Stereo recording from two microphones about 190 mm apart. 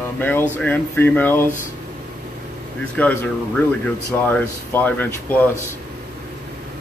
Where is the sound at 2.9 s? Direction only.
10° left (ahead or behind).